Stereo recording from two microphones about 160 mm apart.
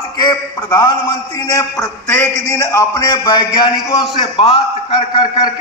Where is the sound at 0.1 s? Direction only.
25° left (ahead or behind).